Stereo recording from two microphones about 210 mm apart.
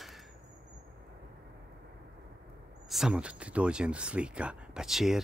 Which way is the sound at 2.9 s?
Centre (ahead or behind).